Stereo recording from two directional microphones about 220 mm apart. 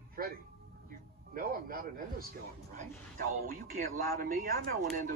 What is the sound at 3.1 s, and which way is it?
Speech, 40° right (ahead or behind).